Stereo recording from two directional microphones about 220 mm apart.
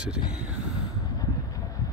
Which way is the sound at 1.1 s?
15° left (ahead or behind).